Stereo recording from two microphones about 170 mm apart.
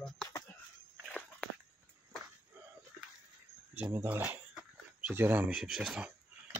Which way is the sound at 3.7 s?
15° right (ahead or behind).